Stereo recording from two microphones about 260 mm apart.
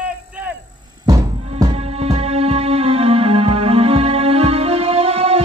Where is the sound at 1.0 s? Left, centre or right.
Centre.